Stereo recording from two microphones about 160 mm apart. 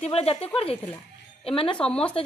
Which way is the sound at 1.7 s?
5° left (ahead or behind).